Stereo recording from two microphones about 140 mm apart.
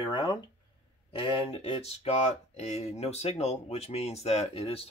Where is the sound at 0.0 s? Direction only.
35° left (ahead or behind).